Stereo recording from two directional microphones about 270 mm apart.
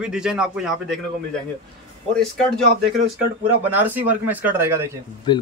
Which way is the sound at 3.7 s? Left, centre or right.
Centre.